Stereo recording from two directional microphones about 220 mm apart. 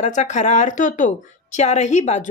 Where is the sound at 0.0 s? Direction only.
35° left (ahead or behind).